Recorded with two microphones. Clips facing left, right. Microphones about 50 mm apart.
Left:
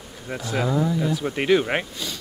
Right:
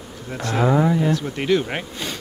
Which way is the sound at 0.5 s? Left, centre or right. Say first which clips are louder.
Right 5 dB; right.